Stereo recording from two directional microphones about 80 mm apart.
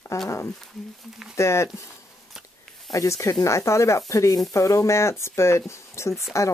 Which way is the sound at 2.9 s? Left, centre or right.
Left.